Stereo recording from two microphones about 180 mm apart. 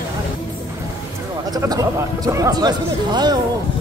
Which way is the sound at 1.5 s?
20° right (ahead or behind).